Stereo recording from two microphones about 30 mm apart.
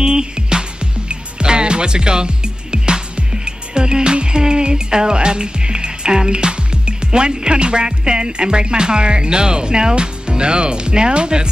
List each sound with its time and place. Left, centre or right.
0.0 s music: right